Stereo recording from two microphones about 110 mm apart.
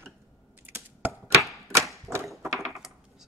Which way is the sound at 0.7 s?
15° right (ahead or behind).